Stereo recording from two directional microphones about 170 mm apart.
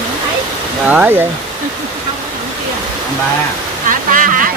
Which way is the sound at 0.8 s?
10° right (ahead or behind).